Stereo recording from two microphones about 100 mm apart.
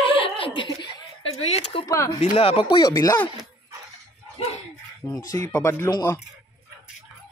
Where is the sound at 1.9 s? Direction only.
30° left (ahead or behind).